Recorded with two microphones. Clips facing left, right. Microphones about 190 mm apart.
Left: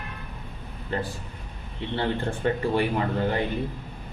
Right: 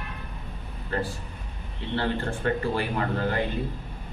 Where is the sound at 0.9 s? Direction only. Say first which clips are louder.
Even; 20° left (ahead or behind).